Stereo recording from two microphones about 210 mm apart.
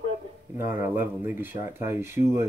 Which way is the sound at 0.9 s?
10° right (ahead or behind).